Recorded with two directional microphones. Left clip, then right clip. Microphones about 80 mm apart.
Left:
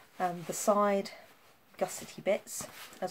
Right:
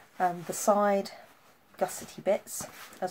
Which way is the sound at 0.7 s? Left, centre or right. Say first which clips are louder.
Right 3 dB; left.